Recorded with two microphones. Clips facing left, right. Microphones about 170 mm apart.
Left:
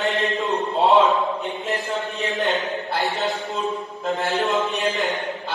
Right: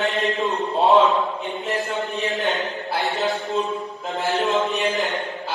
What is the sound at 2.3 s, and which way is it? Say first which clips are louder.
A man's voice: left 1 dB; centre (ahead or behind).